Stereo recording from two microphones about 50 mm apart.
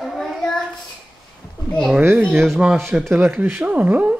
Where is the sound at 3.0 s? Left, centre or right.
Right.